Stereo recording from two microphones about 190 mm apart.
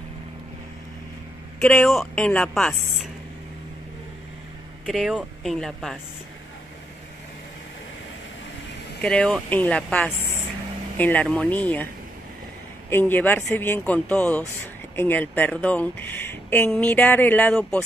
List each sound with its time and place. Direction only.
1.6 s a woman's voice: 5° left (ahead or behind)
4.8 s a woman's voice: centre (ahead or behind)
9.0 s a woman's voice: 5° left (ahead or behind)
12.9 s speech: 10° left (ahead or behind)